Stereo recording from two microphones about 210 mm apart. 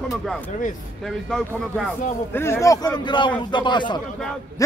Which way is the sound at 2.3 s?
10° left (ahead or behind).